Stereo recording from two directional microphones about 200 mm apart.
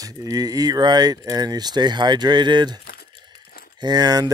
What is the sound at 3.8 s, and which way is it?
Speech, 20° right (ahead or behind).